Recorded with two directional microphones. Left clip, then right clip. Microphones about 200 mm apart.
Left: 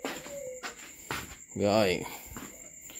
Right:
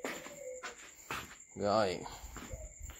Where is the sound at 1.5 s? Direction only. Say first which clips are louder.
Left 6 dB; 35° left (ahead or behind).